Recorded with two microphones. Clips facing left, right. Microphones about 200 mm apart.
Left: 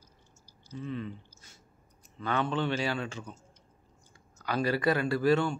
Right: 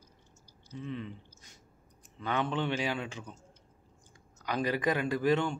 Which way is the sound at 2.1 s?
15° right (ahead or behind).